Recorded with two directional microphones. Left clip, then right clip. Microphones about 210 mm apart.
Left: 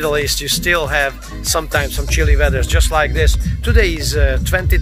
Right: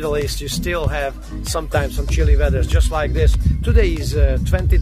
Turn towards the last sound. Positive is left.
turn(degrees=0)  # may be behind; listen again after turning